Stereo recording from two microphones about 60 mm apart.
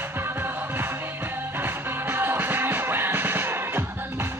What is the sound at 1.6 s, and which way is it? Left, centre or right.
Music, right.